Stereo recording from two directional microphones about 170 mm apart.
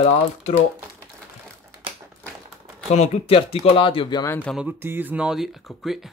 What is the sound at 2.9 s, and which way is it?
Speech, 40° left (ahead or behind).